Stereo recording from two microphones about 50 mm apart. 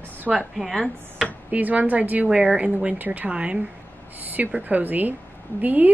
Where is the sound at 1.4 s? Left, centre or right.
Right.